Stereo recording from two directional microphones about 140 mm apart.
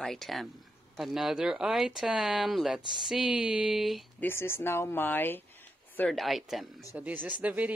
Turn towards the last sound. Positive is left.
turn(degrees=-10)  # may be behind; listen again after turning